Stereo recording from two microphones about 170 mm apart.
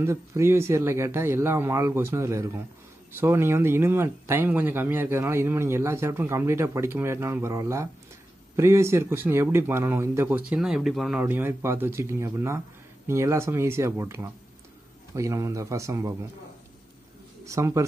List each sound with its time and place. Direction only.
0.0 s speech: 15° right (ahead or behind)
17.5 s speech: 15° right (ahead or behind)